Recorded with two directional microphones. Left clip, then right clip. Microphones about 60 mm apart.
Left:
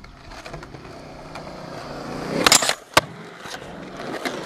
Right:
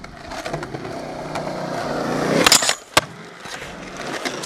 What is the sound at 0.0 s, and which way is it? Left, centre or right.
Vehicle, right.